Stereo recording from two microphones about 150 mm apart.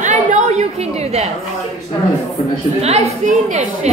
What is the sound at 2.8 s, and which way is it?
A woman's voice, 45° right (ahead or behind).